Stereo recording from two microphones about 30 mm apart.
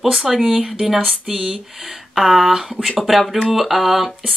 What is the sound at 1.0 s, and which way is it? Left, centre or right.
Speech, centre.